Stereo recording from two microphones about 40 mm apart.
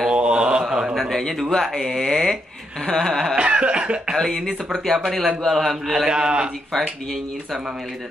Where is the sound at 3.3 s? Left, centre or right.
Right.